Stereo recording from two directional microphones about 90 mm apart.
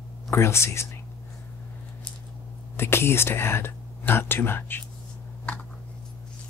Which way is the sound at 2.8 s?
25° left (ahead or behind).